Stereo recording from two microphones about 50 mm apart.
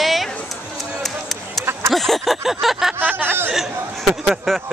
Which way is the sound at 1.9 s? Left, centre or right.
Centre.